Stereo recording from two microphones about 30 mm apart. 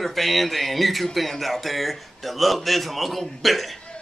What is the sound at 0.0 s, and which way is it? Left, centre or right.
A man's voice, centre.